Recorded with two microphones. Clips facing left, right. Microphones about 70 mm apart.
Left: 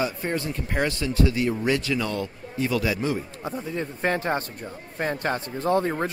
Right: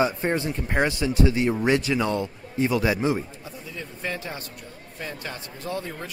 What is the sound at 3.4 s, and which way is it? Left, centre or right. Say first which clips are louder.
Speech: left 8 dB; left.